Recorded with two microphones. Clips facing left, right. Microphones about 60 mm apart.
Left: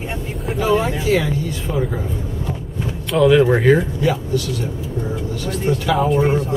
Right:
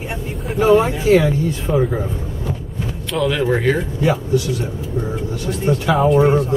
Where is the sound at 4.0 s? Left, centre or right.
Right.